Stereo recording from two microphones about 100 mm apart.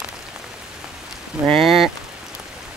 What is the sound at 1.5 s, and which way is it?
Rain on surface, centre (ahead or behind).